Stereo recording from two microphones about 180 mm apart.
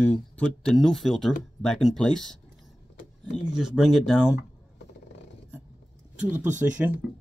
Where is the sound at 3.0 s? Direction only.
40° left (ahead or behind).